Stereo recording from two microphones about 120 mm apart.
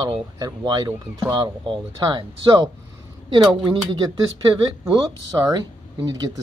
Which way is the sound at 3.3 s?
40° right (ahead or behind).